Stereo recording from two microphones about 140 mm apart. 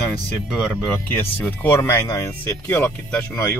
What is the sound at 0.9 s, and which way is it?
Speech, 15° left (ahead or behind).